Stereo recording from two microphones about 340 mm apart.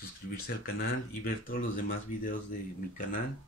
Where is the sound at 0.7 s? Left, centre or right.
Left.